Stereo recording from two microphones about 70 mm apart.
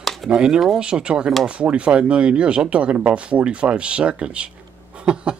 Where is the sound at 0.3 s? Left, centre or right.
Centre.